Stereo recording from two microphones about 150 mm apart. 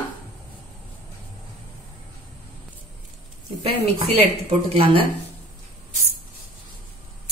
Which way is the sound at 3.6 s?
45° right (ahead or behind).